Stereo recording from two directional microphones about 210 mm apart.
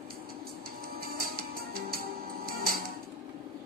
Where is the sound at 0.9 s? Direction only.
45° right (ahead or behind).